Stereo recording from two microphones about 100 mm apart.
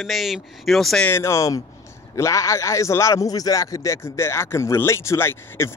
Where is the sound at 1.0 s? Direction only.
25° left (ahead or behind).